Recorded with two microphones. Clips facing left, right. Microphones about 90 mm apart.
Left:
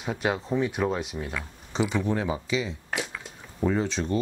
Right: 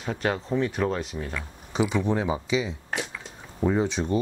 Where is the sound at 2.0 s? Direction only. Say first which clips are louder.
Right 2 dB; 20° right (ahead or behind).